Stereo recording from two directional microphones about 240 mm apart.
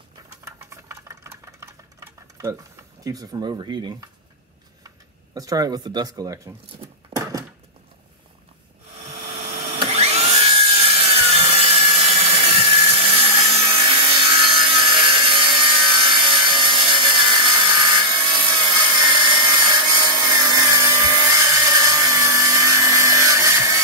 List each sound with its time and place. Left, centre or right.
0.7 s sewing machine: centre
3.0 s speech: centre
5.3 s speech: centre
7.1 s a sound: centre
9.0 s dental drill: right; by 23.8 s centre